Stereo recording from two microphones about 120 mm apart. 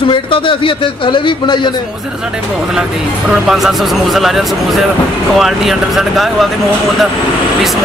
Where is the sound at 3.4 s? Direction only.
Centre (ahead or behind).